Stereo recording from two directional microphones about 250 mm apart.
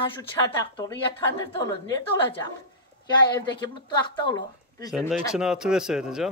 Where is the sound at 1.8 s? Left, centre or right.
Centre.